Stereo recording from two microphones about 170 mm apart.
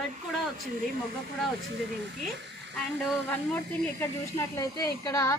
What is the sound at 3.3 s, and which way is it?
Speech, 10° left (ahead or behind).